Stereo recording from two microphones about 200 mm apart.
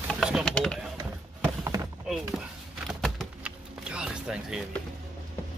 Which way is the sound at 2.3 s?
5° right (ahead or behind).